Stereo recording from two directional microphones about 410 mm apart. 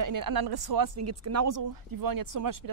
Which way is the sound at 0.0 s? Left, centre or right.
Right.